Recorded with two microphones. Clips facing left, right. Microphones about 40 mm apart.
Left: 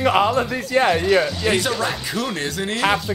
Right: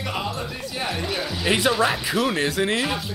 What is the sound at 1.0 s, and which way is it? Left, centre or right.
Speech, centre.